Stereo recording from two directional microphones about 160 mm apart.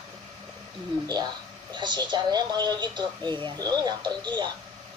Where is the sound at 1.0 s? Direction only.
25° right (ahead or behind).